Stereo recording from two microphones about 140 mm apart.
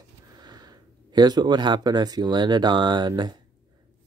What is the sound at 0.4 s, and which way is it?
Speech, 30° right (ahead or behind).